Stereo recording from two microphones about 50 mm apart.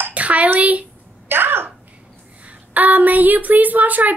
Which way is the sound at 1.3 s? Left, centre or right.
Right.